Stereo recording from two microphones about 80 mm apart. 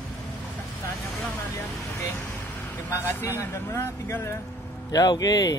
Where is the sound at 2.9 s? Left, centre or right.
Left.